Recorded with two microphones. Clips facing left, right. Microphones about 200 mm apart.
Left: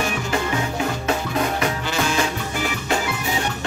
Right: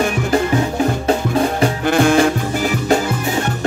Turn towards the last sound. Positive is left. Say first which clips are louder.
# right 10 dB
turn(degrees=-55)  # may be behind; listen again after turning